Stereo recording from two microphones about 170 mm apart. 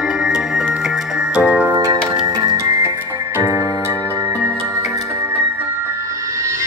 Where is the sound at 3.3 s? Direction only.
15° right (ahead or behind).